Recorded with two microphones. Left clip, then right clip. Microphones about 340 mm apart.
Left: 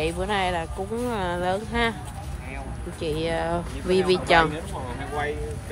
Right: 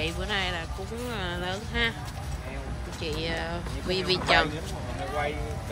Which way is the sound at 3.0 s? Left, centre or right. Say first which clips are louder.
Left 6 dB; centre.